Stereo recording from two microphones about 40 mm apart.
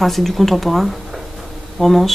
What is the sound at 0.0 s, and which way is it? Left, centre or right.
Speech, centre.